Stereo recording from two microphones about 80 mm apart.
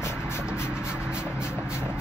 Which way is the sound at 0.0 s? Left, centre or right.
Left.